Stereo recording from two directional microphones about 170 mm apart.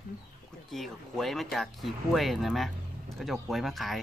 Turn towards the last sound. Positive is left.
turn(degrees=0)  # may be behind; listen again after turning